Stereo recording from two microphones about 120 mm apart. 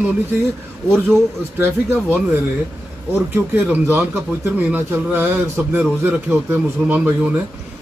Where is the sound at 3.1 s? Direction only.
15° right (ahead or behind).